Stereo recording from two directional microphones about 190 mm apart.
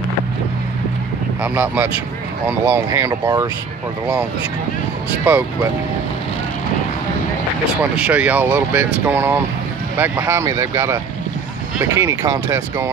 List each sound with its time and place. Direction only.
1.4 s speech: 10° right (ahead or behind)
5.2 s speech: 10° right (ahead or behind)
7.8 s speech: 5° right (ahead or behind)